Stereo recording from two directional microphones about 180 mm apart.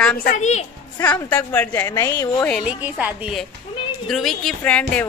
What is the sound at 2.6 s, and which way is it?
A woman's voice, 10° right (ahead or behind).